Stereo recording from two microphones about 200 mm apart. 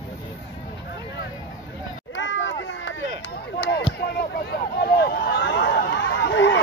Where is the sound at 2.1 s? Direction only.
70° left (ahead or behind).